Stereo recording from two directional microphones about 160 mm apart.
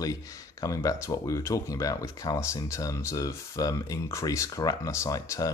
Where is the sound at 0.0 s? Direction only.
20° left (ahead or behind).